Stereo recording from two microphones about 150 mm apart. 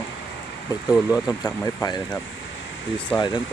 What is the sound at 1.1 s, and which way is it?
Speech, 20° left (ahead or behind).